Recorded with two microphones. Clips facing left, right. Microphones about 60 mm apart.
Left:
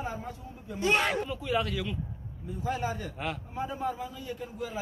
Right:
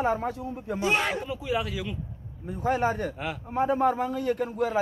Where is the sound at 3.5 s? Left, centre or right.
Right.